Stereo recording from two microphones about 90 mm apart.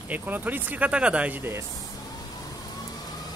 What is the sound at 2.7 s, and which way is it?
Vehicle, 45° left (ahead or behind).